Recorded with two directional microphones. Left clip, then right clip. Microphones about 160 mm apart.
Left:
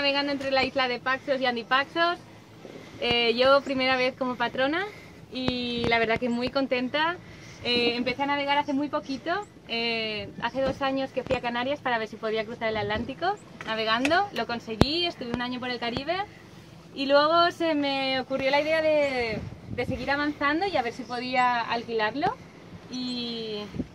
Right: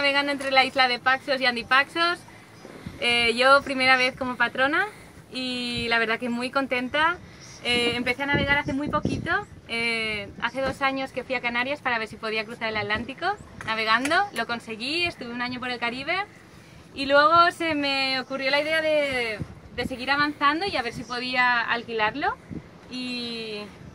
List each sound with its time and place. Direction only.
0.0 s speech: 15° right (ahead or behind)
7.6 s a woman's voice: centre (ahead or behind)
10.4 s speech: 10° right (ahead or behind)
18.0 s a woman's voice: 20° right (ahead or behind); by 23.7 s 5° right (ahead or behind)